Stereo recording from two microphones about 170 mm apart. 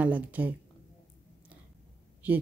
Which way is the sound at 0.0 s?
10° right (ahead or behind).